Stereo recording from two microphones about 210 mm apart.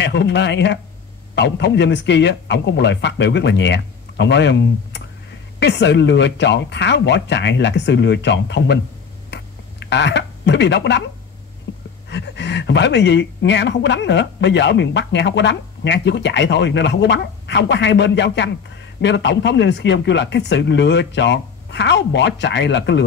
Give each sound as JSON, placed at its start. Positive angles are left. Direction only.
{"t": 0.0, "sound": "speech", "side_deg": 55}
{"t": 9.3, "sound": "a sound", "side_deg": 55}
{"t": 12.1, "sound": "speech", "side_deg": 55}